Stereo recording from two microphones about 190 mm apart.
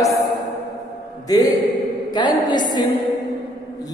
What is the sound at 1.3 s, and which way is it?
A man's voice, 20° left (ahead or behind).